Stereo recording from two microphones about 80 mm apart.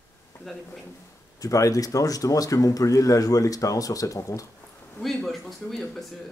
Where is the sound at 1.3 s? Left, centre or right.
Left.